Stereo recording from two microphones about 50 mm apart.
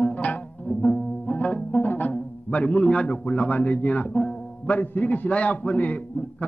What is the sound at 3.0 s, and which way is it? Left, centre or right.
A man's voice, left.